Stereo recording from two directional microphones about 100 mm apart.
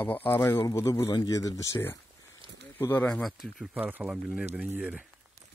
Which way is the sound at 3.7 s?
15° right (ahead or behind).